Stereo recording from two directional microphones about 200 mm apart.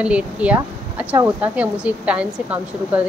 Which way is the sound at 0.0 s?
5° right (ahead or behind).